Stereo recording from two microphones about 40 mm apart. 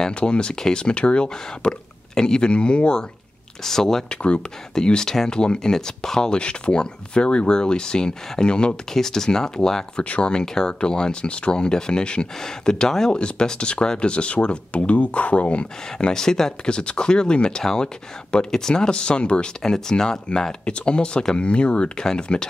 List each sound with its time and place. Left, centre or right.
0.0 s speech: left
3.6 s speech: centre
4.1 s speech: left
4.7 s speech: centre
6.3 s speech: left
8.9 s speech: centre
9.9 s speech: left
10.3 s speech: centre
16.1 s speech: centre
19.6 s speech: centre